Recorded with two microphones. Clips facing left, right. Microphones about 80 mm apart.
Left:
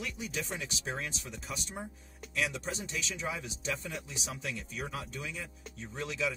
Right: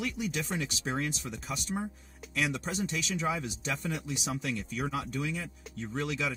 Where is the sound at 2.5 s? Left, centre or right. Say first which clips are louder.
Right 5 dB; right.